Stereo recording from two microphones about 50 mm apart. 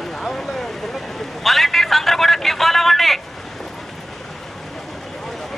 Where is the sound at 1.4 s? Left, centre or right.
Centre.